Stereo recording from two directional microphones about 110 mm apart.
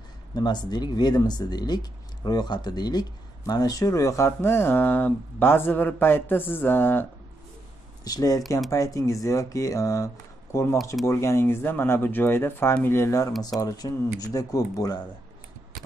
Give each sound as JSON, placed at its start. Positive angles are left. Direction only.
{"t": 0.4, "sound": "speech", "side_deg": 40}
{"t": 8.0, "sound": "speech", "side_deg": 35}